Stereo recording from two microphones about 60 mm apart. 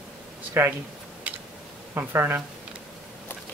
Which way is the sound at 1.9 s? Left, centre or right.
Right.